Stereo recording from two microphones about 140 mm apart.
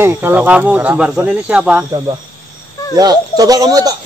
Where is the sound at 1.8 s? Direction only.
30° right (ahead or behind).